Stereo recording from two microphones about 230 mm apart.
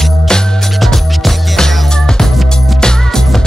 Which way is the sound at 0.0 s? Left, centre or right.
Centre.